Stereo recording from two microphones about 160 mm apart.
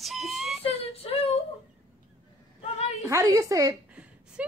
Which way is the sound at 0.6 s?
35° left (ahead or behind).